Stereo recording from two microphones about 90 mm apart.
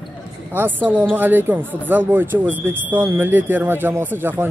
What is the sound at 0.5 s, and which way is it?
Speech, 25° right (ahead or behind).